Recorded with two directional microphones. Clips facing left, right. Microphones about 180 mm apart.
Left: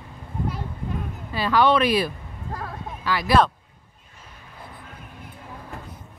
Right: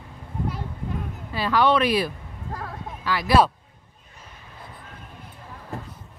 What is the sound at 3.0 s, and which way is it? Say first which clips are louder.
Speech: even; 5° right (ahead or behind).